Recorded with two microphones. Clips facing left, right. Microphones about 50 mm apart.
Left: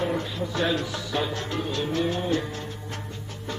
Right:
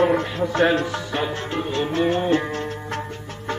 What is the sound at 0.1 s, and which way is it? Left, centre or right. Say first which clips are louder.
Music: right 7 dB; right.